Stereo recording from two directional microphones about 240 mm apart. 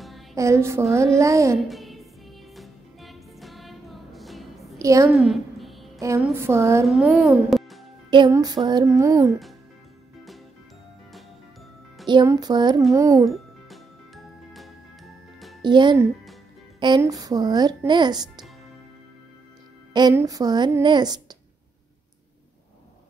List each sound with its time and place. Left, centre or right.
0.0 s music: centre
0.4 s speech: centre
1.7 s music: centre
4.7 s a woman's voice: centre
5.1 s a sound: centre
5.9 s a woman's voice: centre
6.9 s a child's voice: centre
7.4 s music: centre
8.1 s speech: centre
12.1 s speech: centre
13.3 s music: centre
15.6 s speech: centre
19.9 s speech: centre